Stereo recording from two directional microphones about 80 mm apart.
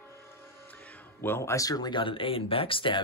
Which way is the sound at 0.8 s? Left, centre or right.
Centre.